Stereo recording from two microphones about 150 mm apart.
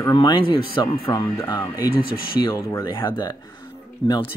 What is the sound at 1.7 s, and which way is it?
Speech, 25° left (ahead or behind).